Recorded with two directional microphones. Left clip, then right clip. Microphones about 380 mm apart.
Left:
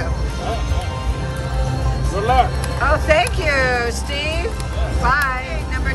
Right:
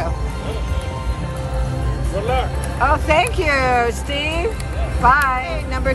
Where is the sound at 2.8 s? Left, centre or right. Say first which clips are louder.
Even; centre.